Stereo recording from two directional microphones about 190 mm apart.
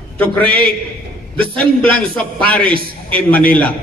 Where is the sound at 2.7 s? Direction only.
30° right (ahead or behind).